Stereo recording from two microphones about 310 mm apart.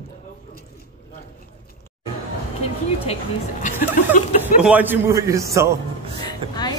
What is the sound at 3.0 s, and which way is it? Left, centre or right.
Speech, left.